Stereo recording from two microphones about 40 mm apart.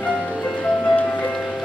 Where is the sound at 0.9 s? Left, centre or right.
Left.